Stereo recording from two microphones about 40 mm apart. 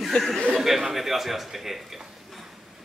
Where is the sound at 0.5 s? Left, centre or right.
Centre.